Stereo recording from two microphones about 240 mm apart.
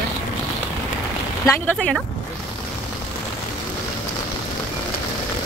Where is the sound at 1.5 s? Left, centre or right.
Centre.